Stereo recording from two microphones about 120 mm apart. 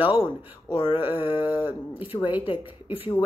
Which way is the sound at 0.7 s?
40° left (ahead or behind).